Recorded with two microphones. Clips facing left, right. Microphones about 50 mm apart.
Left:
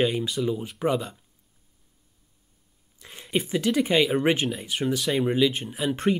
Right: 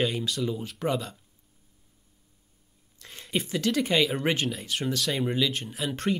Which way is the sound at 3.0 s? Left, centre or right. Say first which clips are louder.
Left 3 dB; centre.